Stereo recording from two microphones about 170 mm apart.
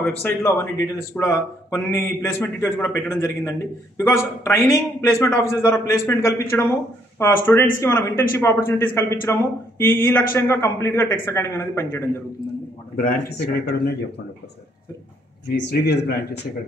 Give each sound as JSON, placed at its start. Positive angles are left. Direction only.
{"t": 0.0, "sound": "speech", "side_deg": 10}
{"t": 12.9, "sound": "speech", "side_deg": 60}
{"t": 15.5, "sound": "speech", "side_deg": 75}